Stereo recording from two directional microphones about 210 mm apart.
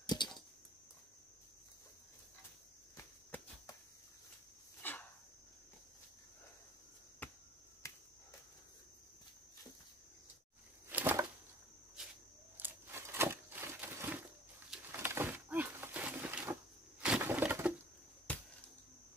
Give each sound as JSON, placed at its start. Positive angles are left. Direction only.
{"t": 0.0, "sound": "a sound", "side_deg": 20}
{"t": 3.0, "sound": "cricket", "side_deg": 15}
{"t": 4.8, "sound": "dog", "side_deg": 10}
{"t": 7.2, "sound": "chop", "side_deg": 10}
{"t": 7.8, "sound": "cricket", "side_deg": 15}
{"t": 10.9, "sound": "a sound", "side_deg": -10}
{"t": 17.0, "sound": "wood", "side_deg": -5}